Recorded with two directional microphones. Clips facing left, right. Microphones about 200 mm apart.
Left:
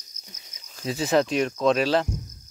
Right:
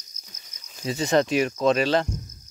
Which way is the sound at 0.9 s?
Centre (ahead or behind).